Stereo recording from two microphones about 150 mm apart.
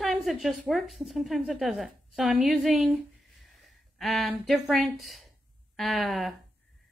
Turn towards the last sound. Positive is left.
turn(degrees=0)  # may be behind; listen again after turning